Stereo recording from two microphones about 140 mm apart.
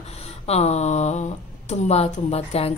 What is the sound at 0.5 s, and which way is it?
Speech, 50° left (ahead or behind).